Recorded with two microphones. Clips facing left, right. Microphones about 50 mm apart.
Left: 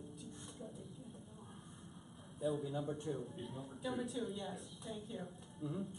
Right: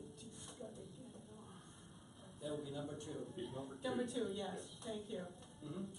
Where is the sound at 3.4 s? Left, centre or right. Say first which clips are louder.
Right 1 dB; centre.